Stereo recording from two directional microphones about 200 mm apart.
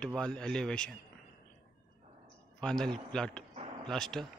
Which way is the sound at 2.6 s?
5° left (ahead or behind).